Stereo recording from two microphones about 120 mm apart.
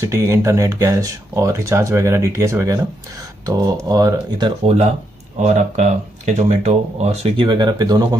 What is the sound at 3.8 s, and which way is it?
Speech, 30° right (ahead or behind).